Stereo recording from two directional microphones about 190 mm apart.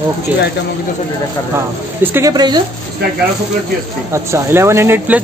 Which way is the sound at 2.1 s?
20° right (ahead or behind).